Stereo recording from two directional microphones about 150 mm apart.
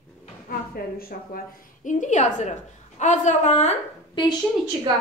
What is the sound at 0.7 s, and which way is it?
A woman's voice, 75° left (ahead or behind).